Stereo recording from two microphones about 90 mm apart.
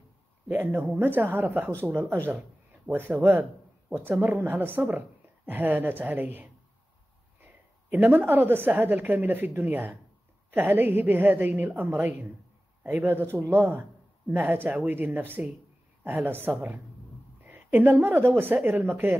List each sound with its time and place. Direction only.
0.5 s a woman's voice: 20° right (ahead or behind)